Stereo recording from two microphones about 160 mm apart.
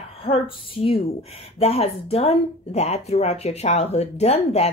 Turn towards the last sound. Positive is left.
turn(degrees=40)  # may be behind; listen again after turning